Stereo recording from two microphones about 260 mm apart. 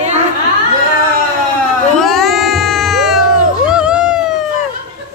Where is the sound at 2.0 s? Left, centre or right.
Centre.